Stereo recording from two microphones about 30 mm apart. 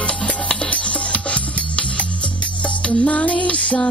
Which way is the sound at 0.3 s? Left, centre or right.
Left.